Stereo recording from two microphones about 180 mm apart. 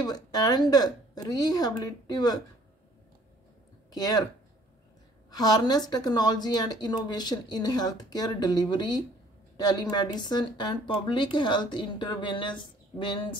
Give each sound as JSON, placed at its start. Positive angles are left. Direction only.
{"t": 0.0, "sound": "speech", "side_deg": 20}
{"t": 3.9, "sound": "speech", "side_deg": 20}
{"t": 5.3, "sound": "speech", "side_deg": 20}